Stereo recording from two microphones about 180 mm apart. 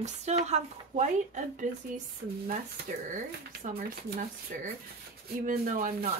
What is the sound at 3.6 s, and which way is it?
Speech, 50° right (ahead or behind).